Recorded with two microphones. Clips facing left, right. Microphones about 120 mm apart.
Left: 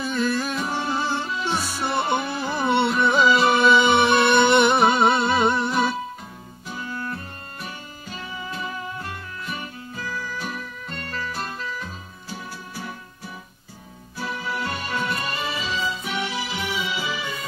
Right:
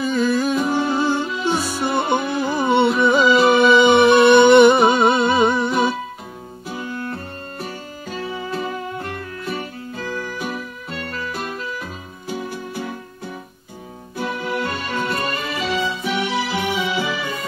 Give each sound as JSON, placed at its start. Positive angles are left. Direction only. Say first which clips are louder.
{"t": 0.0, "sound": "music", "louder": "right 5 dB", "side_deg": 0}
{"t": 6.7, "sound": "music", "louder": "right 4 dB", "side_deg": -50}
{"t": 7.1, "sound": "music", "louder": "right 4 dB", "side_deg": -35}
{"t": 10.0, "sound": "music", "louder": "right 4 dB", "side_deg": -50}
{"t": 11.8, "sound": "music", "louder": "right 5 dB", "side_deg": -50}
{"t": 14.1, "sound": "music", "louder": "right 5 dB", "side_deg": -50}